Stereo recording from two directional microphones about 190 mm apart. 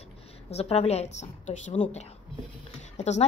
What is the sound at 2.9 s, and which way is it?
Speech, 35° left (ahead or behind).